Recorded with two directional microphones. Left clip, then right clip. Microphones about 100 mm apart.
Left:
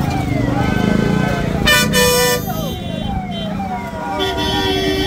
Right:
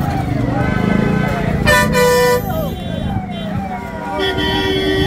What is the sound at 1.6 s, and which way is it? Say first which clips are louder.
Vehicle: right 1 dB; 30° left (ahead or behind).